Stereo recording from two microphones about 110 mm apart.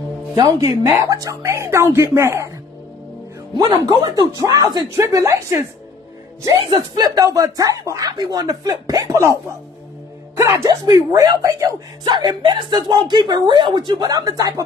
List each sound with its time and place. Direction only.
0.6 s speech: 30° right (ahead or behind)
3.5 s speech: 40° right (ahead or behind); by 5.7 s 25° right (ahead or behind)
6.4 s speech: 40° right (ahead or behind)
14.0 s speech: 35° right (ahead or behind)